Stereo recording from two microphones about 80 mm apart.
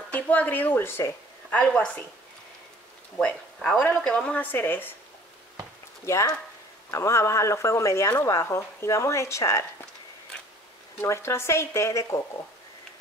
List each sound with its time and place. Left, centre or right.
0.1 s speech: left
1.5 s a woman's voice: centre
3.2 s a woman's voice: centre
4.5 s speech: left
6.0 s speech: left
11.0 s speech: left